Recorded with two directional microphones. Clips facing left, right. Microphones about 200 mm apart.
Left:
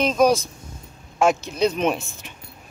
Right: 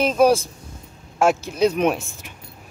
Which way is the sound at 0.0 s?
10° right (ahead or behind).